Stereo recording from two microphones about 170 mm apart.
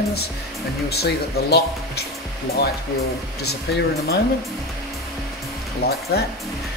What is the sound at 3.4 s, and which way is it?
Speech, 70° left (ahead or behind).